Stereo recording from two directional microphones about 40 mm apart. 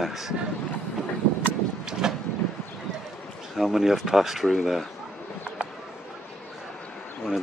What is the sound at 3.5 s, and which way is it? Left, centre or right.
Speech, centre.